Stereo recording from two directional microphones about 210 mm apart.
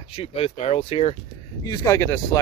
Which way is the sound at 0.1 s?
30° left (ahead or behind).